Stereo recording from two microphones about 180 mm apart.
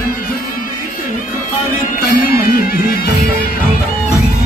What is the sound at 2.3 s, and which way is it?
Music, 55° left (ahead or behind).